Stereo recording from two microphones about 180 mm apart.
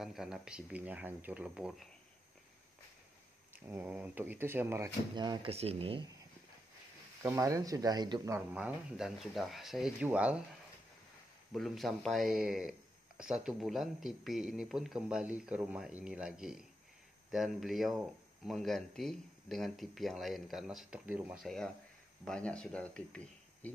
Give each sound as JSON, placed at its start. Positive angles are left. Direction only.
{"t": 0.0, "sound": "speech", "side_deg": -5}
{"t": 3.5, "sound": "speech", "side_deg": -10}
{"t": 5.1, "sound": "speech", "side_deg": -25}
{"t": 7.2, "sound": "speech", "side_deg": -15}
{"t": 8.4, "sound": "speech", "side_deg": -5}
{"t": 11.5, "sound": "speech", "side_deg": 0}